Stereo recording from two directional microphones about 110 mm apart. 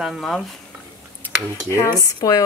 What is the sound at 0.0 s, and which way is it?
Speech, centre (ahead or behind).